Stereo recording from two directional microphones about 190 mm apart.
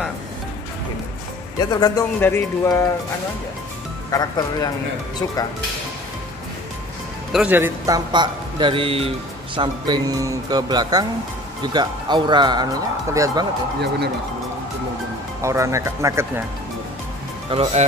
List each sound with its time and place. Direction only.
1.7 s speech: 20° left (ahead or behind)
4.1 s speech: 20° left (ahead or behind)
7.3 s speech: 10° right (ahead or behind)
13.7 s speech: 60° right (ahead or behind)
15.4 s speech: 15° right (ahead or behind)
17.5 s speech: 30° right (ahead or behind)